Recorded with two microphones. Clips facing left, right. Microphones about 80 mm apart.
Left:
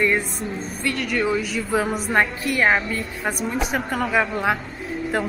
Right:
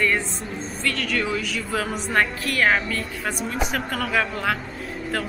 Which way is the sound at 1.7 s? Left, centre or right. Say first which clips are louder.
Left 5 dB; centre.